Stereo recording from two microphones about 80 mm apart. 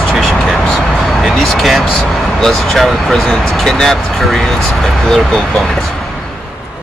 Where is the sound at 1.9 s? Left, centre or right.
Centre.